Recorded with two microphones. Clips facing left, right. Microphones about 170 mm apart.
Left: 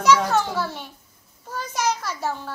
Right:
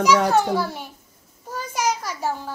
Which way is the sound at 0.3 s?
10° right (ahead or behind).